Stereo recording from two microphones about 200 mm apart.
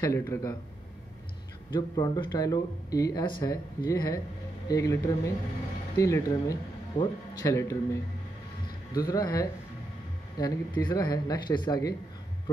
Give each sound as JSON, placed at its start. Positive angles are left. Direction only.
{"t": 0.0, "sound": "speech", "side_deg": 15}
{"t": 1.7, "sound": "speech", "side_deg": 20}